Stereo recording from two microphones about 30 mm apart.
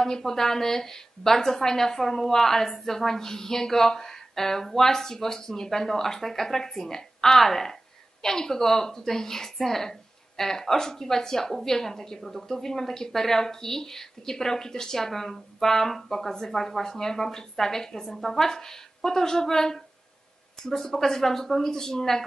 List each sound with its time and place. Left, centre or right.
0.0 s a woman's voice: centre
7.2 s a woman's voice: centre
12.4 s a woman's voice: centre
16.5 s speech: centre
16.8 s a woman's voice: centre